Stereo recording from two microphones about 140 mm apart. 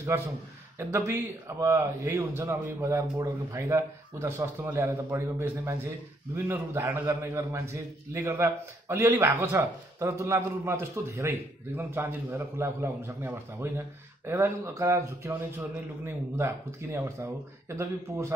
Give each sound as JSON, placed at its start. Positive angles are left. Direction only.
{"t": 0.7, "sound": "a man's voice", "side_deg": -20}
{"t": 16.3, "sound": "a man's voice", "side_deg": -20}